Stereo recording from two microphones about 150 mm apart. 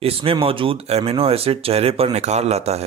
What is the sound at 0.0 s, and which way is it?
Speech, 40° right (ahead or behind).